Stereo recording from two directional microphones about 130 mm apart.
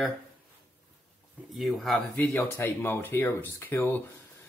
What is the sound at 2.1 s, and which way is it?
Speech, 15° left (ahead or behind).